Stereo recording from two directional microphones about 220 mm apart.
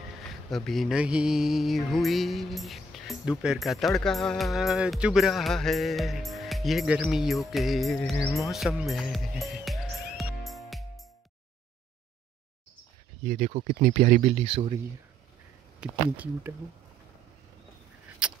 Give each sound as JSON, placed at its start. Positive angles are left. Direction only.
{"t": 0.5, "sound": "music", "side_deg": 0}
{"t": 13.2, "sound": "speech", "side_deg": -30}
{"t": 15.8, "sound": "speech", "side_deg": -5}
{"t": 18.2, "sound": "keys jangling", "side_deg": -5}